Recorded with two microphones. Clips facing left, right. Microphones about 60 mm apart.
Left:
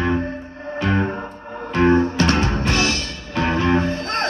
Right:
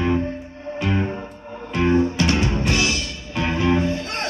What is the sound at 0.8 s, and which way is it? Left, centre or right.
Music, left.